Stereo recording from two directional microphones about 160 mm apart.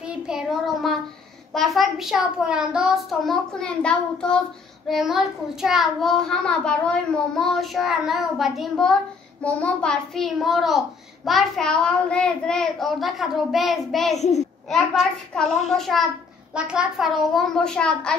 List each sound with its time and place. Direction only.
0.0 s child singing: 5° right (ahead or behind)
1.5 s a child's voice: centre (ahead or behind)
14.1 s a child's voice: 45° left (ahead or behind)
15.7 s a child's voice: centre (ahead or behind)